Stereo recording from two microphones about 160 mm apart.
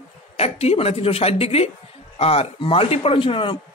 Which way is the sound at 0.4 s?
40° left (ahead or behind).